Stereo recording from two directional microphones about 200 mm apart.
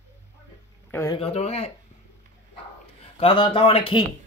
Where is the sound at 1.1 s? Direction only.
30° left (ahead or behind).